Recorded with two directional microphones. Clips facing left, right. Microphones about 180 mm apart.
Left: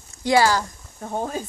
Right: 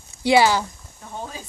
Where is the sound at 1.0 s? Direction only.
50° left (ahead or behind).